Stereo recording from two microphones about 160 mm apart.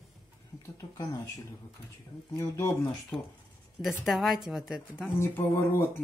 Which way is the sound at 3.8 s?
Centre (ahead or behind).